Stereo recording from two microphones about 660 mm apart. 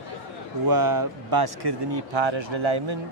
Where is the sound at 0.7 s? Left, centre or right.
Right.